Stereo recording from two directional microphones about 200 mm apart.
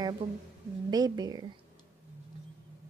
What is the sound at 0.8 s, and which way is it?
Speech, 20° right (ahead or behind).